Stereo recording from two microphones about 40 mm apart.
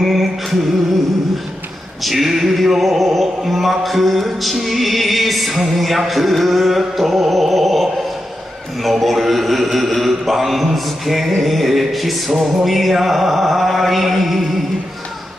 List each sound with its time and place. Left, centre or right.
0.0 s music: centre
2.0 s music: centre
6.8 s a sound: centre
8.8 s mantra: centre